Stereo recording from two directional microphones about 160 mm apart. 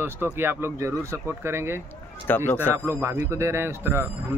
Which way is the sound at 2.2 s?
10° left (ahead or behind).